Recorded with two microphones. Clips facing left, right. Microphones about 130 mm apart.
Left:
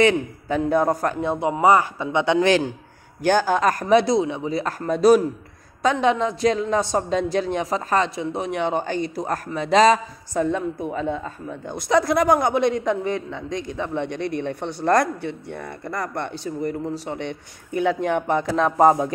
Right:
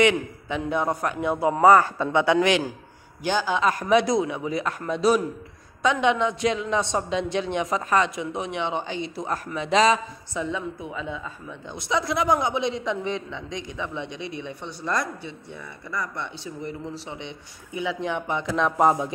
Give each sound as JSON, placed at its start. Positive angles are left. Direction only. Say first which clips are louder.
{"t": 0.0, "sound": "speech", "louder": "left 2 dB", "side_deg": 35}
{"t": 1.5, "sound": "speech", "louder": "right 1 dB", "side_deg": 15}
{"t": 2.4, "sound": "speech", "louder": "left 3 dB", "side_deg": 35}
{"t": 3.2, "sound": "a man's voice", "louder": "left 5 dB", "side_deg": 50}
{"t": 13.5, "sound": "speech", "louder": "left 8 dB", "side_deg": -20}
{"t": 13.7, "sound": "a man's voice", "louder": "left 7 dB", "side_deg": 50}